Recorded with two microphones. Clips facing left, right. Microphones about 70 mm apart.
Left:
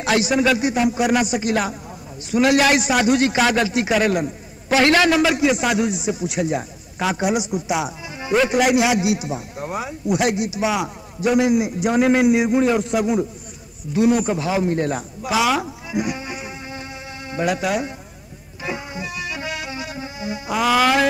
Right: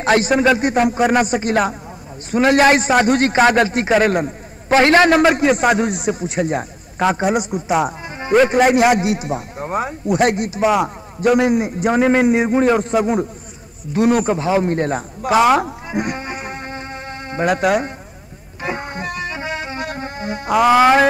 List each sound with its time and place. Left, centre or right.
0.0 s a man's voice: right
14.3 s a man's voice: right
18.6 s music: right
19.8 s music: right
20.6 s speech: right